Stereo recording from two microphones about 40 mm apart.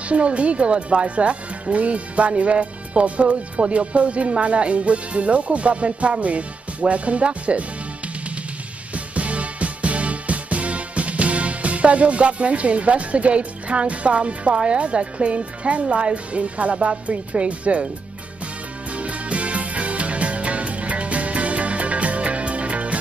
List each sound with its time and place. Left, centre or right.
0.1 s speech: right
8.9 s music: right
14.6 s speech: right
18.9 s music: right